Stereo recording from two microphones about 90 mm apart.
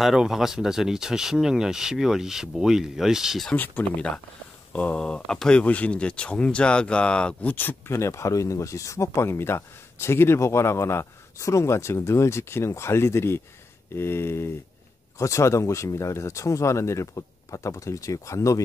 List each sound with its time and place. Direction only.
0.0 s speech: 5° right (ahead or behind)
3.5 s speech: 20° left (ahead or behind)